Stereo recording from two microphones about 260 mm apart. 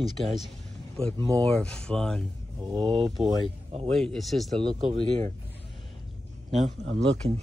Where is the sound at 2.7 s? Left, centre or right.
Centre.